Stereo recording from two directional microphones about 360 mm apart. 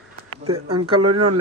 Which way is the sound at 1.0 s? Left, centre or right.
Right.